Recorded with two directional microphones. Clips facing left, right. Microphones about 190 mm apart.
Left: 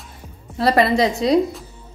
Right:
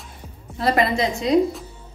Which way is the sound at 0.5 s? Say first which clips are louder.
Left 4 dB; 35° left (ahead or behind).